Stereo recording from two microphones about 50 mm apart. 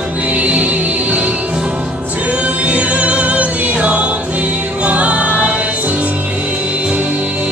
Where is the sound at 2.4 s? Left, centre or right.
Right.